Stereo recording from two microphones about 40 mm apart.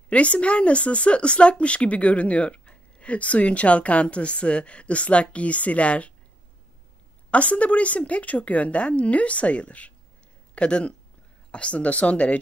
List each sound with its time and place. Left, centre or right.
0.1 s speech: left
7.2 s speech: left